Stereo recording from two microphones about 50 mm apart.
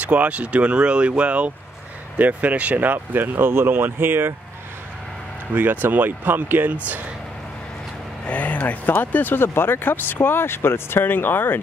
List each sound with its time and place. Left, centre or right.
0.0 s speech: right
5.5 s speech: right
8.3 s speech: left